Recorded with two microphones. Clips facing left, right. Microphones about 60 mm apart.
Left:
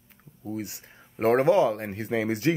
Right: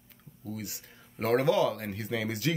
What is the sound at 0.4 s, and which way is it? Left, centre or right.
Speech, left.